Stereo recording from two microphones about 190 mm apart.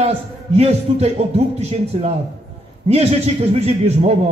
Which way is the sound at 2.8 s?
35° right (ahead or behind).